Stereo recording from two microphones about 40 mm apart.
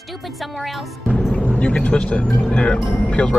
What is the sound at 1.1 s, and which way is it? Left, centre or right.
Music, left.